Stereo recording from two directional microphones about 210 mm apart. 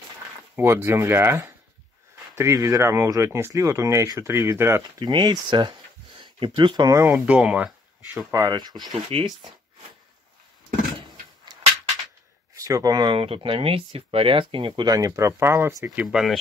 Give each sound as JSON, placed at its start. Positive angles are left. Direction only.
{"t": 0.6, "sound": "speech", "side_deg": -10}
{"t": 7.1, "sound": "speech", "side_deg": -5}
{"t": 8.3, "sound": "speech", "side_deg": -15}
{"t": 11.5, "sound": "a sound", "side_deg": -20}
{"t": 12.5, "sound": "speech", "side_deg": -15}